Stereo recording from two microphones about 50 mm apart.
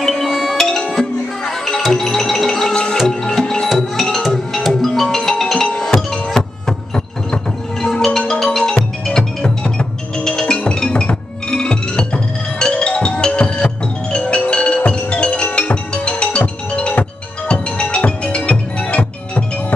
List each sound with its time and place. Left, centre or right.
0.0 s music: centre
2.0 s music: centre
2.7 s music: centre
7.8 s music: centre; by 19.4 s left